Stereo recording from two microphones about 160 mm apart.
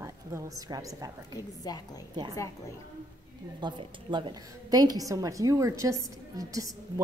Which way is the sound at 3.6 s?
30° right (ahead or behind).